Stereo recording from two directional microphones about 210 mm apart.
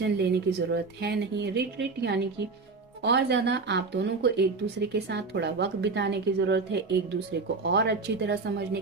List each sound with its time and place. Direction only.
0.0 s speech: 50° right (ahead or behind)